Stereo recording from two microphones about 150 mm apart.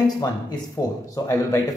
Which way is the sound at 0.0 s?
25° left (ahead or behind).